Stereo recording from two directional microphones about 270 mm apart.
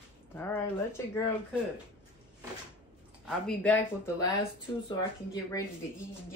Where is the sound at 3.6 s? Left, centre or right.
Centre.